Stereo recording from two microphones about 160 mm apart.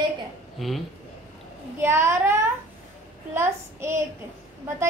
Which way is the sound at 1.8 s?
15° right (ahead or behind).